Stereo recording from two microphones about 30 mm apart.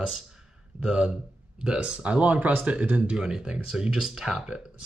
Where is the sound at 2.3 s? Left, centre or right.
Right.